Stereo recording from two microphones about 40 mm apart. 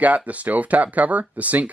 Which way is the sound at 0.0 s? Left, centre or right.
Right.